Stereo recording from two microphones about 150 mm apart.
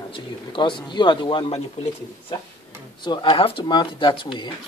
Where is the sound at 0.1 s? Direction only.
35° left (ahead or behind).